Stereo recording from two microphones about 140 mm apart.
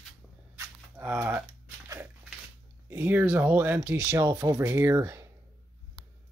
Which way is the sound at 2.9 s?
10° right (ahead or behind).